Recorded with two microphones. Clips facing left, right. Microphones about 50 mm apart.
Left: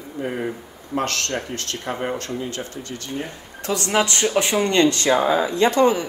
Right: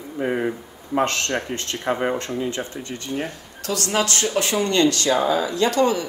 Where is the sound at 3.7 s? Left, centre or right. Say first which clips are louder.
Left 2 dB; left.